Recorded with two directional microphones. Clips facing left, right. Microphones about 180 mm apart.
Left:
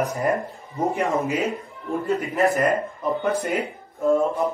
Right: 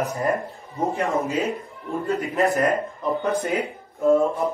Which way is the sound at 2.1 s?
Centre (ahead or behind).